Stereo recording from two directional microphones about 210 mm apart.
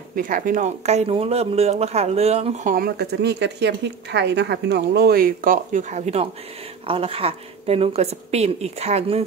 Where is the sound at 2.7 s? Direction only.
50° right (ahead or behind).